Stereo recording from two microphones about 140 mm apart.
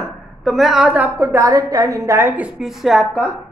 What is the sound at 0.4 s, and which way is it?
A woman's voice, centre (ahead or behind).